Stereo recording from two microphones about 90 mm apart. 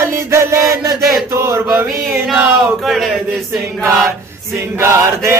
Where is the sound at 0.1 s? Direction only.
30° right (ahead or behind).